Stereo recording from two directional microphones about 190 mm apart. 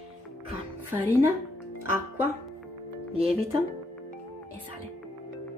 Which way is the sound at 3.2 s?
30° right (ahead or behind).